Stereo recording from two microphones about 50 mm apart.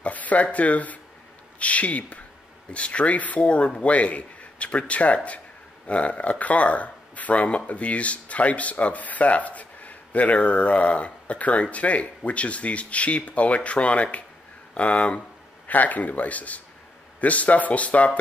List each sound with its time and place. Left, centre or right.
0.0 s speech: left